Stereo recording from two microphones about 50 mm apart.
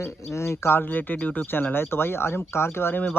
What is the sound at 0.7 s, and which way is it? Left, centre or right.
Speech, left.